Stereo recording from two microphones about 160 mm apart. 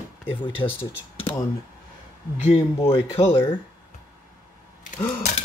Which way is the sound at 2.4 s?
40° left (ahead or behind).